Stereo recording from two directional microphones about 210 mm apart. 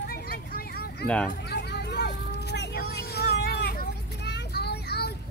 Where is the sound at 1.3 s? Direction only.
50° left (ahead or behind).